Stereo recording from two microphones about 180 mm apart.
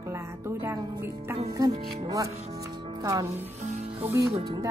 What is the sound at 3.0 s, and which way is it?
Speech, 20° right (ahead or behind).